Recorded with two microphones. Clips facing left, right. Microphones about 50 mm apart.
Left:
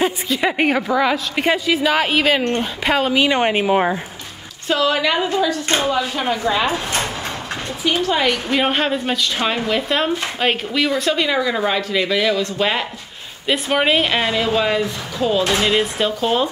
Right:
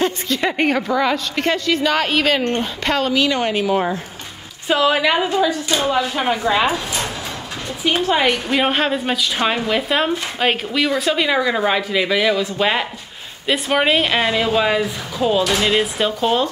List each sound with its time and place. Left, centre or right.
0.0 s a woman's voice: centre
4.6 s speech: centre
7.8 s speech: centre